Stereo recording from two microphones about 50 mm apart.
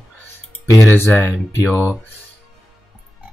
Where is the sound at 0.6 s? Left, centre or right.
Left.